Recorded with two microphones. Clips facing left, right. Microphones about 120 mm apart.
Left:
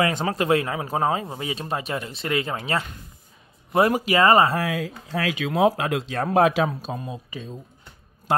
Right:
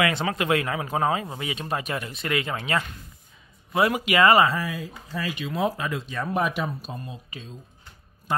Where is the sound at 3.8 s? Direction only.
40° left (ahead or behind).